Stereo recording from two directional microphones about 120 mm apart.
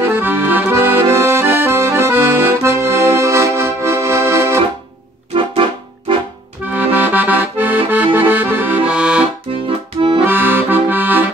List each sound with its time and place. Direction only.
0.0 s accordion: 20° right (ahead or behind)
5.3 s music: 45° right (ahead or behind)
6.7 s accordion: 15° right (ahead or behind)
9.7 s accordion: 45° right (ahead or behind)
10.2 s accordion: 15° right (ahead or behind)